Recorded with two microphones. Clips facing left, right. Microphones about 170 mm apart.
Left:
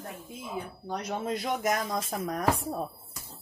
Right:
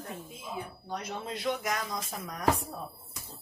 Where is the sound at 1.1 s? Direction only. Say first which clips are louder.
Left 3 dB; 50° left (ahead or behind).